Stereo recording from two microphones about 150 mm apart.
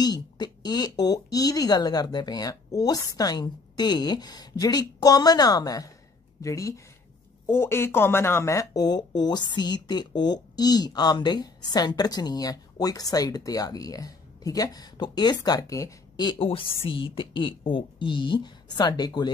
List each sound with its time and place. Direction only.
0.0 s speech: 30° left (ahead or behind)